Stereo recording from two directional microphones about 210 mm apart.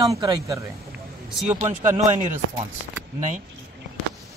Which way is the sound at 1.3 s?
5° right (ahead or behind).